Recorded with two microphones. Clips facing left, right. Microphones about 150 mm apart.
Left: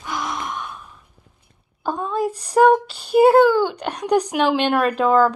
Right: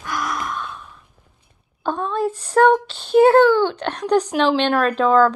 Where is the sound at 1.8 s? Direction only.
10° left (ahead or behind).